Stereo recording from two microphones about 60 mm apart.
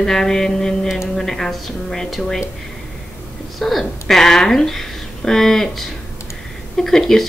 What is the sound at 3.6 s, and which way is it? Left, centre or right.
A woman's voice, centre.